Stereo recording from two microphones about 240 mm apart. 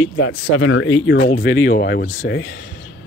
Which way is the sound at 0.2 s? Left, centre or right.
Left.